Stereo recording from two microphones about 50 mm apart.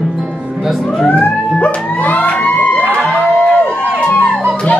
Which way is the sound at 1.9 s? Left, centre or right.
Left.